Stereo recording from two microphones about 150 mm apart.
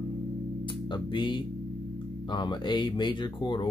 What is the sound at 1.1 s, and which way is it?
Speech, 30° left (ahead or behind).